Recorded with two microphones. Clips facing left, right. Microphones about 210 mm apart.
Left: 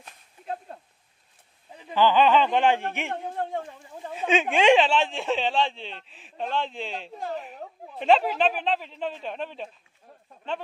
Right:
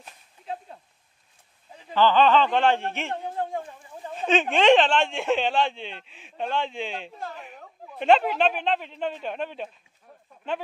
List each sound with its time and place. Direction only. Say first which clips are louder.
2.0 s speech: right 1 dB; 10° left (ahead or behind)